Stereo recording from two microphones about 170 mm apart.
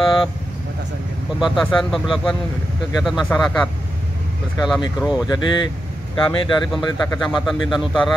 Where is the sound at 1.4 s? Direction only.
Centre (ahead or behind).